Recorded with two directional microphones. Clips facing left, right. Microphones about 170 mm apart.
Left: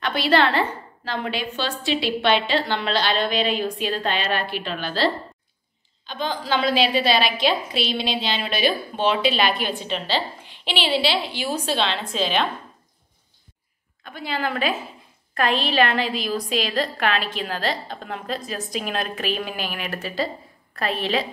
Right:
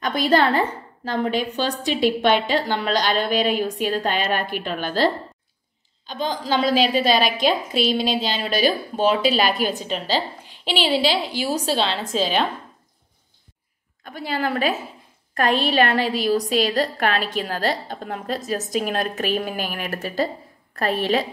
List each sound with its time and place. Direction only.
0.0 s a sound: 45° right (ahead or behind)
0.6 s a woman's voice: 45° right (ahead or behind)
14.0 s a woman's voice: 45° right (ahead or behind)